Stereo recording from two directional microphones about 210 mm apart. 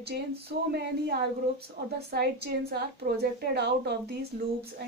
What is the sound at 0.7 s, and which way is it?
A woman's voice, 50° right (ahead or behind).